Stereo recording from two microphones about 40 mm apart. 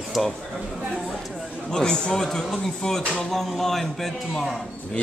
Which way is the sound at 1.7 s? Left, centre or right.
Left.